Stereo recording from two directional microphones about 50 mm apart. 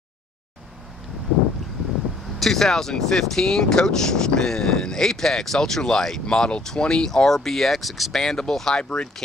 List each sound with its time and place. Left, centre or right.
2.3 s speech: centre
8.2 s speech: centre